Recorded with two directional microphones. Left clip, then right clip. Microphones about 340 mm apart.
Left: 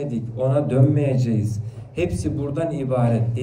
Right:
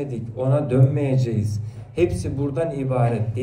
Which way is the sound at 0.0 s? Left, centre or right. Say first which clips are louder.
Left 2 dB; centre.